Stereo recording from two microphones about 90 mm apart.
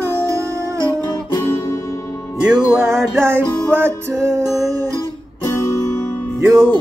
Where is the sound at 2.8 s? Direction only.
30° right (ahead or behind).